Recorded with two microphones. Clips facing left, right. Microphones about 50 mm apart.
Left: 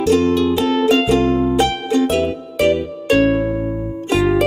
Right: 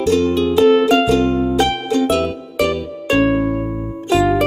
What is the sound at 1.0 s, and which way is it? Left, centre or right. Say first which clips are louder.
Music: even; left.